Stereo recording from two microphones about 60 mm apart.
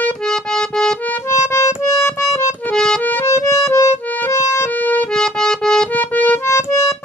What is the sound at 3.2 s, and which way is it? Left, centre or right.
Music, left.